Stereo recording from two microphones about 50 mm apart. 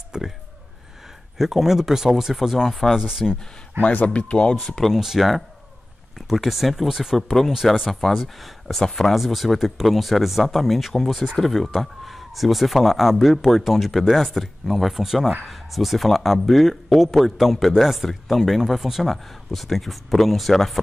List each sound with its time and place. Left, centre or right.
0.1 s speech: centre
1.4 s speech: centre
3.8 s speech: left
4.7 s speech: centre